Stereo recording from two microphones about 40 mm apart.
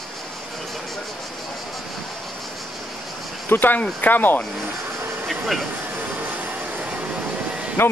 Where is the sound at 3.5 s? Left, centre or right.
Left.